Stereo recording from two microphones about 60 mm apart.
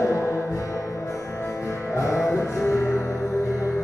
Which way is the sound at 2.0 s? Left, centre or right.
Left.